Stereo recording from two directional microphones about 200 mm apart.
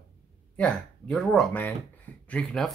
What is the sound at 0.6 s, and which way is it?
Speech, 5° left (ahead or behind).